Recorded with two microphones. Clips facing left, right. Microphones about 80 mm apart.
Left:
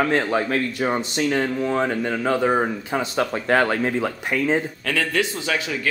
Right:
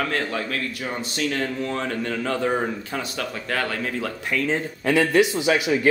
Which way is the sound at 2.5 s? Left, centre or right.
Left.